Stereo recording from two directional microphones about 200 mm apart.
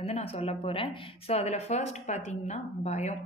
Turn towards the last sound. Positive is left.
turn(degrees=35)  # may be behind; listen again after turning